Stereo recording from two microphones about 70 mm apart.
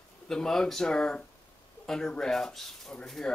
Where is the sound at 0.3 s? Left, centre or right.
Centre.